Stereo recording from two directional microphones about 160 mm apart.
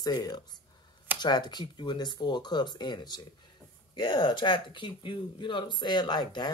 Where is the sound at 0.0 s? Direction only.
25° left (ahead or behind).